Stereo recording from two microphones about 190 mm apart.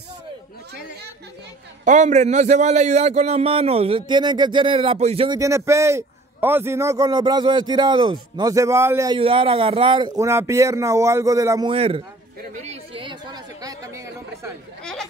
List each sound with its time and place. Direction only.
1.9 s a man's voice: 40° right (ahead or behind)
5.4 s a man's voice: 15° right (ahead or behind)
9.2 s a man's voice: 25° right (ahead or behind)
11.7 s a man's voice: 30° right (ahead or behind)
12.4 s a sound: 40° right (ahead or behind); by 14.5 s 15° right (ahead or behind)
14.8 s chatter: 5° left (ahead or behind)